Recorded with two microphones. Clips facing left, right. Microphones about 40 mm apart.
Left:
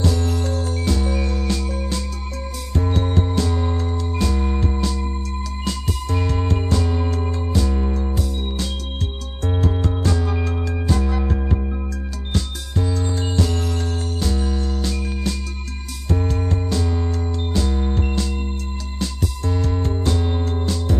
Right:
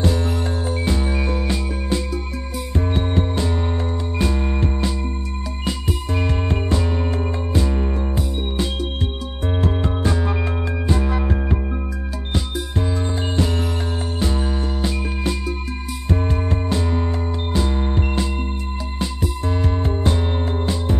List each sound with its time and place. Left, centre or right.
0.0 s music: right